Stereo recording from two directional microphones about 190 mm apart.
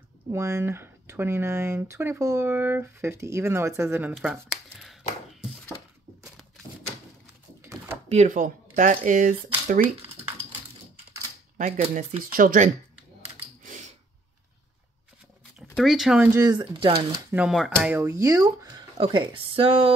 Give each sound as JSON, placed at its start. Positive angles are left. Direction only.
{"t": 0.3, "sound": "speech", "side_deg": -15}
{"t": 4.1, "sound": "speech", "side_deg": 0}
{"t": 6.2, "sound": "a sound", "side_deg": 0}
{"t": 7.6, "sound": "a sound", "side_deg": -10}
{"t": 8.1, "sound": "speech", "side_deg": -40}
{"t": 11.5, "sound": "speech", "side_deg": -40}
{"t": 13.6, "sound": "a sound", "side_deg": -40}
{"t": 15.7, "sound": "speech", "side_deg": 0}
{"t": 16.3, "sound": "speech", "side_deg": -20}
{"t": 17.3, "sound": "speech", "side_deg": -5}